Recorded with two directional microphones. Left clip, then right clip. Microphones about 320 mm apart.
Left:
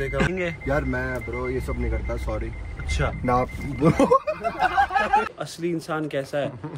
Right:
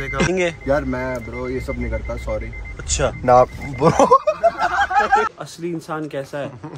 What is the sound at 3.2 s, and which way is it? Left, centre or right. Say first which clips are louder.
Speech: right 11 dB; right.